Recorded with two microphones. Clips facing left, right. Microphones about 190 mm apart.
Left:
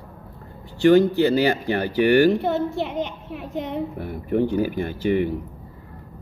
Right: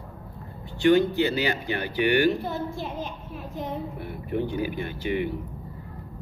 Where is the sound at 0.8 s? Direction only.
40° left (ahead or behind).